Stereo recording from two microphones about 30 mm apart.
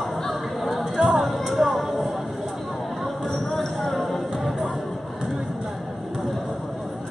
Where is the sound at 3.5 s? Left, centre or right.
Centre.